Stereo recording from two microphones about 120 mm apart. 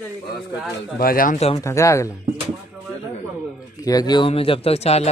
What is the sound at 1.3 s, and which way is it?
Speech, 60° left (ahead or behind).